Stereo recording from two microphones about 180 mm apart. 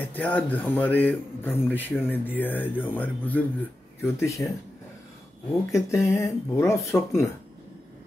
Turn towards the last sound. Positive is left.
turn(degrees=15)  # may be behind; listen again after turning